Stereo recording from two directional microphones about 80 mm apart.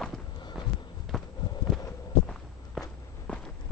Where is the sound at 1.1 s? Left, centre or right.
Centre.